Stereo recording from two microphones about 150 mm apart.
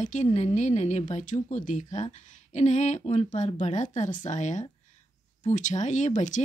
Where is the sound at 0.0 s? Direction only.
55° left (ahead or behind).